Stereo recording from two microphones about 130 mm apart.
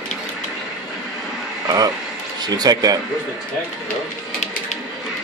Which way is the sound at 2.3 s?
30° right (ahead or behind).